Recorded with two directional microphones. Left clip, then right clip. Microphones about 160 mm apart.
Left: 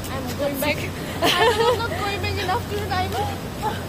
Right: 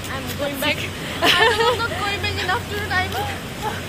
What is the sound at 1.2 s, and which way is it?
Speech, 10° right (ahead or behind).